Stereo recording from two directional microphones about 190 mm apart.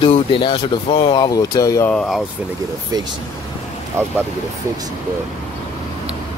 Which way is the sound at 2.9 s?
20° right (ahead or behind).